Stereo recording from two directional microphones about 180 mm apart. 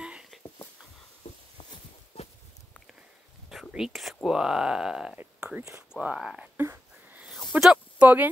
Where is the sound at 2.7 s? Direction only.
Centre (ahead or behind).